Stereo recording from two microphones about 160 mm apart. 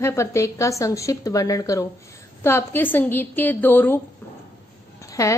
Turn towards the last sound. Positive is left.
turn(degrees=20)  # may be behind; listen again after turning